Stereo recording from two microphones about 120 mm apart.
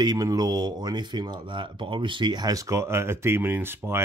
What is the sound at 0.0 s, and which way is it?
Speech, 30° right (ahead or behind).